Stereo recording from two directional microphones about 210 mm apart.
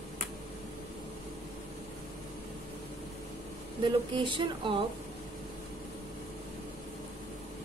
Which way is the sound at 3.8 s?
25° right (ahead or behind).